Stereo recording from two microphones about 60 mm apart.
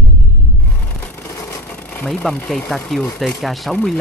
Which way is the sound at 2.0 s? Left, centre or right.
Centre.